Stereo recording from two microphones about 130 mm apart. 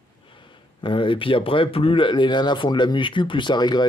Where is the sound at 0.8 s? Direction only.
40° left (ahead or behind).